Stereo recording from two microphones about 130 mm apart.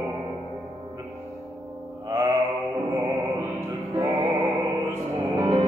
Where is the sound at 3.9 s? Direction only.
25° right (ahead or behind).